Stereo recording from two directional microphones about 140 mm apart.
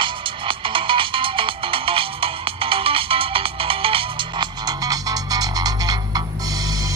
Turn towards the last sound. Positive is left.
turn(degrees=-25)  # may be behind; listen again after turning